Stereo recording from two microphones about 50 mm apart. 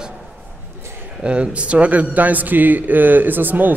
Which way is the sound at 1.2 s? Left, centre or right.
Right.